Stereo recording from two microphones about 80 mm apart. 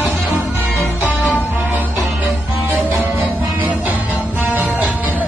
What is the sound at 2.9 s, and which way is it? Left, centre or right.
Music, right.